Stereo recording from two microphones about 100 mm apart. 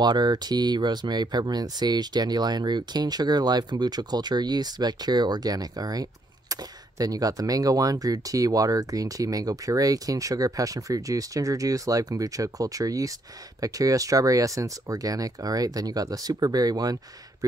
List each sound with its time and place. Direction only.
0.0 s speech: 45° right (ahead or behind)